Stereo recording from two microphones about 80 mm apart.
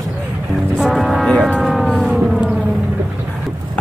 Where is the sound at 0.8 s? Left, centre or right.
Centre.